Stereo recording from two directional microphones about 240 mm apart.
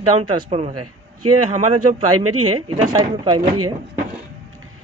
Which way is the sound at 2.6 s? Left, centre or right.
Centre.